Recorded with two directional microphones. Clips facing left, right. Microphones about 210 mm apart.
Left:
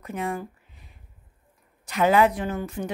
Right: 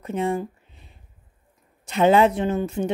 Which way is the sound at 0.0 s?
25° right (ahead or behind).